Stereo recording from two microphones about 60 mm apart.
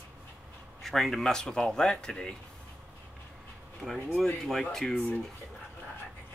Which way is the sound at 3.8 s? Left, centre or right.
Right.